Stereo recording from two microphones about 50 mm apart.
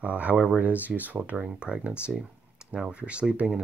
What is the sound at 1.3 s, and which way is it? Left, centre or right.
Speech, right.